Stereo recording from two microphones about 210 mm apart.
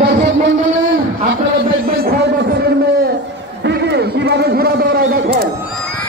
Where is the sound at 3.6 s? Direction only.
50° right (ahead or behind).